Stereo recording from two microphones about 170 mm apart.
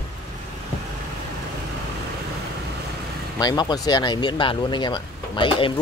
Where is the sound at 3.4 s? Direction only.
25° left (ahead or behind).